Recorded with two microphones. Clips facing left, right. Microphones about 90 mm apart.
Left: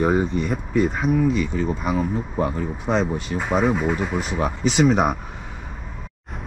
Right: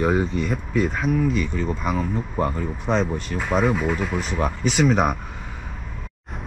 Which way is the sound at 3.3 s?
40° left (ahead or behind).